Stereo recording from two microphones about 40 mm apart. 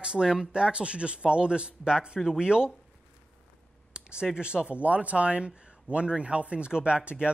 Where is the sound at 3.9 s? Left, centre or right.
Right.